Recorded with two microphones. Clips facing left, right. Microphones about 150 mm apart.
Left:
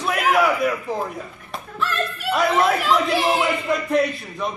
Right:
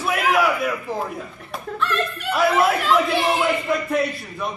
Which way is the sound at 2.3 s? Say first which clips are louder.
Even; 5° right (ahead or behind).